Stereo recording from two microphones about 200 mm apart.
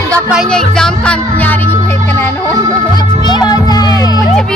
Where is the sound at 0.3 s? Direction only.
Centre (ahead or behind).